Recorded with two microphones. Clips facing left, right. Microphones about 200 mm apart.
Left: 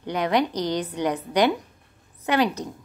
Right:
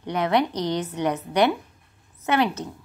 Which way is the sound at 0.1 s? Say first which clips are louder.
Even; 35° left (ahead or behind).